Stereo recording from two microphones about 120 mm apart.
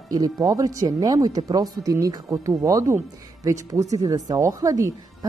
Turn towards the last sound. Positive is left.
turn(degrees=-30)  # may be behind; listen again after turning